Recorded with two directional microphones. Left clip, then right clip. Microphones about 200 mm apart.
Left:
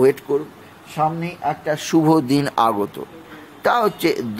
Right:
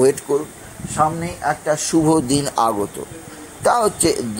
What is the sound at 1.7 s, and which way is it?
A man's voice, 15° left (ahead or behind).